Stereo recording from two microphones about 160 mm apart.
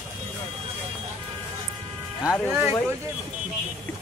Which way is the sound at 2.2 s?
5° right (ahead or behind).